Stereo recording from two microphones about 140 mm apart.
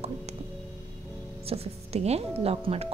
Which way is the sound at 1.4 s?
45° right (ahead or behind).